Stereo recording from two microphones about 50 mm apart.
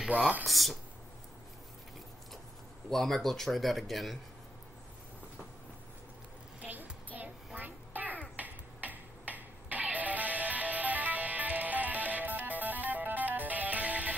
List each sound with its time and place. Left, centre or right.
0.5 s speech: centre
2.9 s speech: centre
6.6 s a sound: right
8.4 s music: right